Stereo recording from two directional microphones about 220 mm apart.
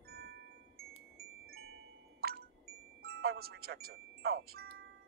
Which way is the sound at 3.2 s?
45° right (ahead or behind).